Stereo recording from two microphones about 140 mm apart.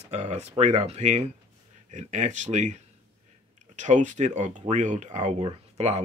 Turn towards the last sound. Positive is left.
turn(degrees=-50)  # may be behind; listen again after turning